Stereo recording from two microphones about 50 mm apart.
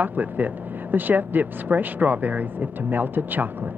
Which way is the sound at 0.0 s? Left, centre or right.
Right.